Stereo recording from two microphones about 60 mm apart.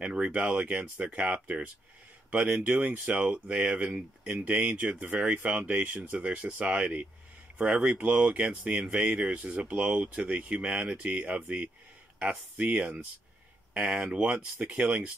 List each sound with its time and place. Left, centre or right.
0.0 s speech: centre
3.3 s speech: centre
9.2 s speech: right